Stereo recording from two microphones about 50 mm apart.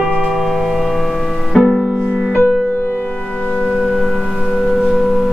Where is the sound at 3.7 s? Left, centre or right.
Centre.